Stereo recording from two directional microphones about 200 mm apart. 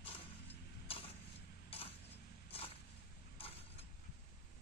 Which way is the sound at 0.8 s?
30° left (ahead or behind).